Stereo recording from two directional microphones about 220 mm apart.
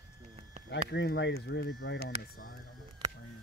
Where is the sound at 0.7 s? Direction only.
50° left (ahead or behind).